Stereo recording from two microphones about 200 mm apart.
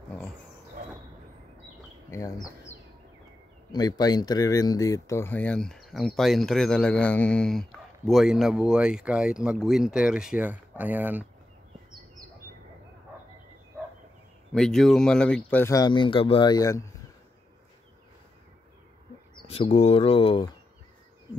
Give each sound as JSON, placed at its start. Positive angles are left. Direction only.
{"t": 2.0, "sound": "speech", "side_deg": 15}
{"t": 3.7, "sound": "speech", "side_deg": 20}
{"t": 14.5, "sound": "speech", "side_deg": 0}
{"t": 19.4, "sound": "speech", "side_deg": 30}